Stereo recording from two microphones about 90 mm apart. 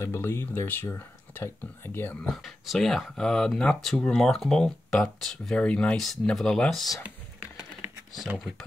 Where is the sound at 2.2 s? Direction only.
Centre (ahead or behind).